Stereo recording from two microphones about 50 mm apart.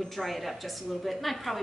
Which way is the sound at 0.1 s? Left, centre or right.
Centre.